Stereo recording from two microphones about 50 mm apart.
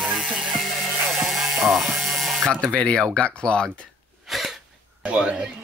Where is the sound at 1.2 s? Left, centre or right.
Centre.